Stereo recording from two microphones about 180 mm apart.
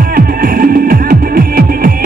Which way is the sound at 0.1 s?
55° right (ahead or behind).